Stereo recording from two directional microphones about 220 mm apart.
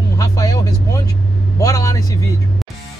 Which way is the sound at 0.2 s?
15° left (ahead or behind).